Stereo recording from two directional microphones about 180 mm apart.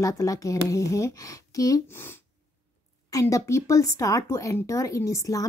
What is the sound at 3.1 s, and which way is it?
Speech, 15° left (ahead or behind).